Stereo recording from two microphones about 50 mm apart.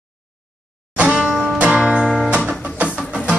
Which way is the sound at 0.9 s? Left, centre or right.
Right.